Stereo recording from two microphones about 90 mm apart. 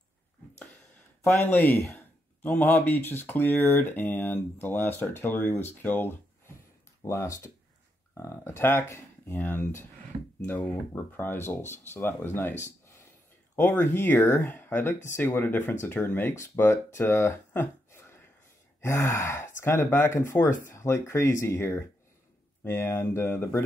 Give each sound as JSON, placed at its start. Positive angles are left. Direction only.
{"t": 1.2, "sound": "speech", "side_deg": 25}
{"t": 7.1, "sound": "speech", "side_deg": 35}
{"t": 17.5, "sound": "a sound", "side_deg": 25}
{"t": 18.8, "sound": "speech", "side_deg": 30}